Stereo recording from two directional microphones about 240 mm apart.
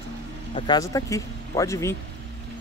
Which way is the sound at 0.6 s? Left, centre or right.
Centre.